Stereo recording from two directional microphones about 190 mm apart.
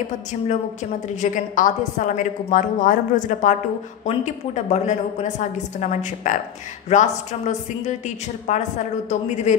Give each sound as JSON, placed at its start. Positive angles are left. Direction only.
{"t": 1.2, "sound": "a woman's voice", "side_deg": 45}